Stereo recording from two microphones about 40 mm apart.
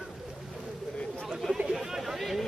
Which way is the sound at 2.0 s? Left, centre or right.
Centre.